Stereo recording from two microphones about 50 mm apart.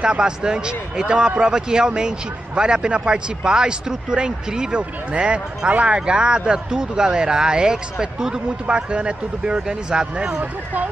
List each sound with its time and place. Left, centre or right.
0.0 s speech: centre
10.4 s speech: right